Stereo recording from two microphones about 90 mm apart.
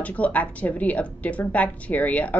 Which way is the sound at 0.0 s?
15° left (ahead or behind).